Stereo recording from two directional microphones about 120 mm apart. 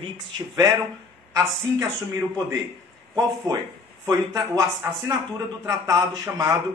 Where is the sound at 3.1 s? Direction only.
30° right (ahead or behind).